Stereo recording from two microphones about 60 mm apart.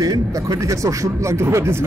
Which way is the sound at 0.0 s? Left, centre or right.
Right.